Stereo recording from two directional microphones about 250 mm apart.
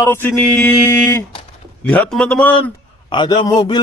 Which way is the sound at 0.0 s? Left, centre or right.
Centre.